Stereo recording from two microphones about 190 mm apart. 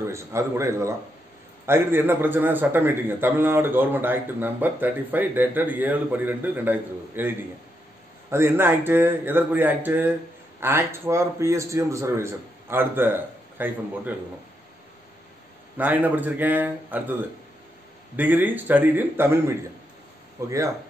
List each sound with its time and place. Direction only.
0.0 s a man's voice: 15° right (ahead or behind)
15.8 s a man's voice: 10° right (ahead or behind)
18.1 s a man's voice: 10° right (ahead or behind)